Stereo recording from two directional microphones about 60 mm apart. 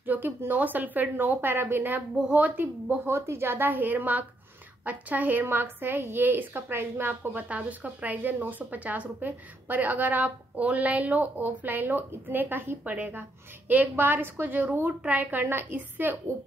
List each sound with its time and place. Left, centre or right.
0.0 s a woman's voice: right
3.1 s a woman's voice: right